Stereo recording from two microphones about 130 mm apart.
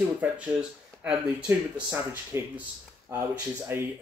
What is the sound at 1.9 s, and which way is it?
Speech, 20° right (ahead or behind).